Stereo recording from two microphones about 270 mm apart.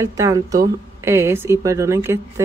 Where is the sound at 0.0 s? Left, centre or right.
Centre.